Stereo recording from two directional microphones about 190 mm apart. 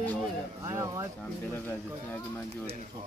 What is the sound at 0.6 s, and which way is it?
Speech, 15° right (ahead or behind).